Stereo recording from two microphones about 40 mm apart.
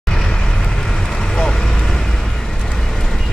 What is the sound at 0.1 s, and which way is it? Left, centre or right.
Vehicle, centre.